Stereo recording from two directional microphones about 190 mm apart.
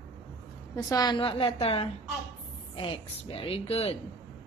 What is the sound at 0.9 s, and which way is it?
A woman's voice, 20° left (ahead or behind).